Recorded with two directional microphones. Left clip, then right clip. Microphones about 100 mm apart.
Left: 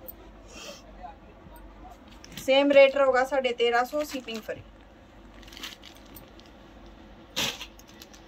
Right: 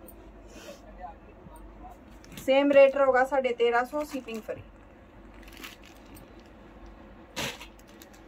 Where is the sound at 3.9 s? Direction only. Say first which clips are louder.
Left 2 dB; 25° left (ahead or behind).